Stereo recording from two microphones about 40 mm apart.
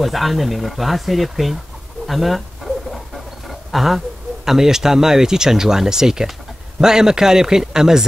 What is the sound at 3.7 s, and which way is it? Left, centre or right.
A man's voice, centre.